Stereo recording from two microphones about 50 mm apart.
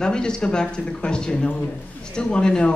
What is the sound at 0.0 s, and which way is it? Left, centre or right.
Speech, centre.